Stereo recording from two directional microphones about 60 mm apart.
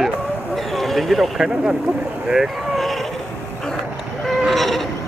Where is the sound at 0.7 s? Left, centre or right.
Centre.